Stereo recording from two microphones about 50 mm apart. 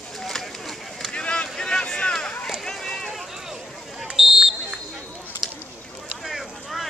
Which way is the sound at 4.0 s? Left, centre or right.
Centre.